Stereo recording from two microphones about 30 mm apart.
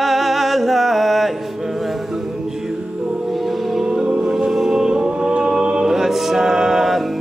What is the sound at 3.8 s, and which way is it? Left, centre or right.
Music, right.